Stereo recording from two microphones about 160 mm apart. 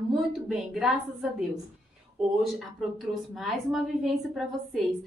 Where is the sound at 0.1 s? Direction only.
Centre (ahead or behind).